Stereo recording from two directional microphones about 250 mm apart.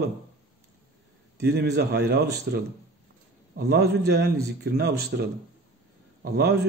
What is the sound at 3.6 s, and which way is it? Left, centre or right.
Speech, right.